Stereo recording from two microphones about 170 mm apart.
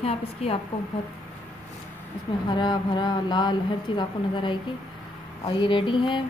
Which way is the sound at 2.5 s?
25° left (ahead or behind).